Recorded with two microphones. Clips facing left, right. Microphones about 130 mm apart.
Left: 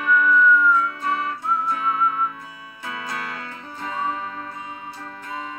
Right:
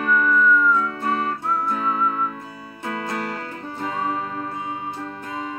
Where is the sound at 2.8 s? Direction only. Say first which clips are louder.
Right 4 dB; 45° right (ahead or behind).